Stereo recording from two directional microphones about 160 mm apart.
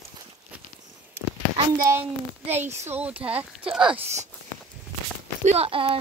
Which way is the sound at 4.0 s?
45° right (ahead or behind).